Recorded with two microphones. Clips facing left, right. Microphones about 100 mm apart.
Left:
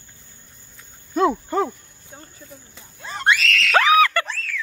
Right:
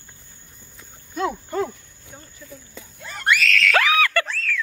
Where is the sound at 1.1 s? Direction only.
30° left (ahead or behind).